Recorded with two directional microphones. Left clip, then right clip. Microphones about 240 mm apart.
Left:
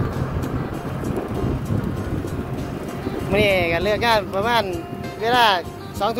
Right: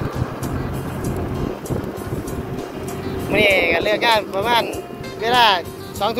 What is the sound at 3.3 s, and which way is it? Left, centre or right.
Speech, centre.